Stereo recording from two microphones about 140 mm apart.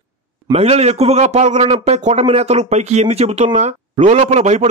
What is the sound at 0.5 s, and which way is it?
Speech, 50° right (ahead or behind).